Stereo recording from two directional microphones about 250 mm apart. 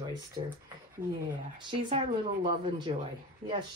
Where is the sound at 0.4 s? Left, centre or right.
Right.